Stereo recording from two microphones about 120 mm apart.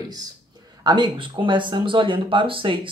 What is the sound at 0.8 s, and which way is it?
Speech, 40° right (ahead or behind).